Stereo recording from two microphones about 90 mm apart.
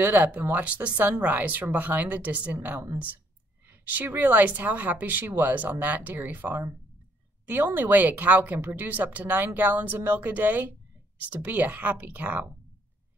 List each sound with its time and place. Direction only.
0.0 s a woman's voice: 20° right (ahead or behind)